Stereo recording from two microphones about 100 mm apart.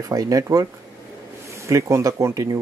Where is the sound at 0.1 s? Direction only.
35° right (ahead or behind).